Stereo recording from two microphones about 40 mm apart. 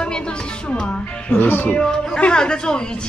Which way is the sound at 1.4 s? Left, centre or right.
Left.